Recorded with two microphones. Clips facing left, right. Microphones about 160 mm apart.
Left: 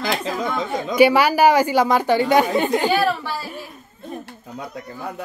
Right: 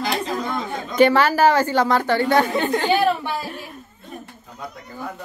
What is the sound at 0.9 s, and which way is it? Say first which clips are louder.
A woman's voice: left 1 dB; 10° left (ahead or behind).